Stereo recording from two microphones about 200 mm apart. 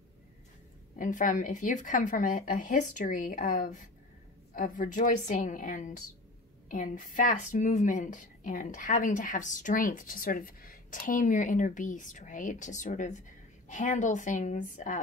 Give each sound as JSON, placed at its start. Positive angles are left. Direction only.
{"t": 0.9, "sound": "a woman's voice", "side_deg": 40}